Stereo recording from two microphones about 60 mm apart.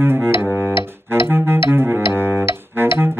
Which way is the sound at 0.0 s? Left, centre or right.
Right.